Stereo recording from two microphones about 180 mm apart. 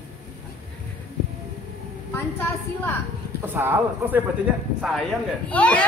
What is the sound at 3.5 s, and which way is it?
Speech, 10° right (ahead or behind).